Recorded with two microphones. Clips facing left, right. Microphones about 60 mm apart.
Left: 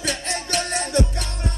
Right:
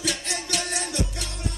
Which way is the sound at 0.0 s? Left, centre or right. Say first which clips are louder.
Left 3 dB; left.